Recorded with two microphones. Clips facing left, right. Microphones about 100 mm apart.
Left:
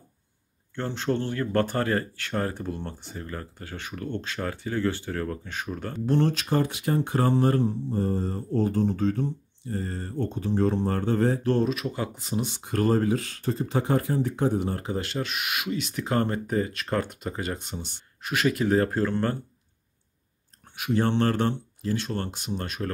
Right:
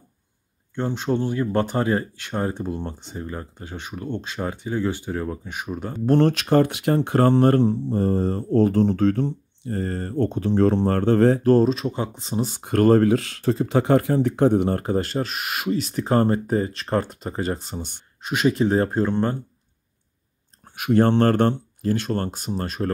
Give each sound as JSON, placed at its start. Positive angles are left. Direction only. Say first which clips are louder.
{"t": 0.7, "sound": "speech", "louder": "right 4 dB", "side_deg": -15}
{"t": 6.0, "sound": "speech", "louder": "right 6 dB", "side_deg": -60}
{"t": 11.4, "sound": "speech", "louder": "right 7 dB", "side_deg": -35}
{"t": 12.4, "sound": "speech", "louder": "right 8 dB", "side_deg": -50}
{"t": 18.2, "sound": "speech", "louder": "right 4 dB", "side_deg": -20}
{"t": 20.6, "sound": "speech", "louder": "right 7 dB", "side_deg": -50}